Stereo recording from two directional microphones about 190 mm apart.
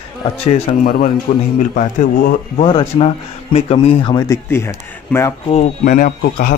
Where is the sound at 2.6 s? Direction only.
30° left (ahead or behind); by 5.3 s 15° left (ahead or behind).